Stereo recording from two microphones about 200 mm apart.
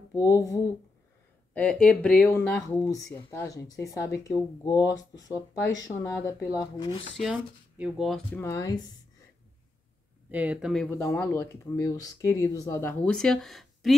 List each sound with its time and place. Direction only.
0.1 s speech: 15° left (ahead or behind)
1.5 s speech: 5° left (ahead or behind); by 7.1 s 25° left (ahead or behind)
7.2 s speech: centre (ahead or behind)
8.4 s speech: 15° left (ahead or behind)
10.3 s speech: 5° right (ahead or behind)
11.1 s speech: 15° left (ahead or behind)
13.1 s speech: 5° left (ahead or behind)